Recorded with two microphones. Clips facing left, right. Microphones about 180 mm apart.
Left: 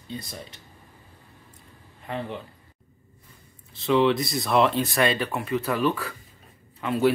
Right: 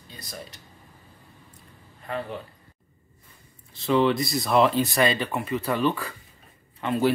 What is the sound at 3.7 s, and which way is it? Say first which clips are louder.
Speech: left 1 dB; centre (ahead or behind).